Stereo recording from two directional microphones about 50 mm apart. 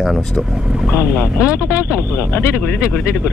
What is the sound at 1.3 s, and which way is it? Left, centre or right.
Speech, left.